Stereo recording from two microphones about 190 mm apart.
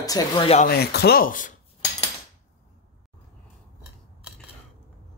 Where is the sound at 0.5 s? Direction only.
50° left (ahead or behind).